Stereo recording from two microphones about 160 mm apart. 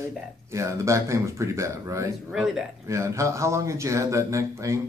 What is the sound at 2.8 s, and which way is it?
Speech, 20° right (ahead or behind).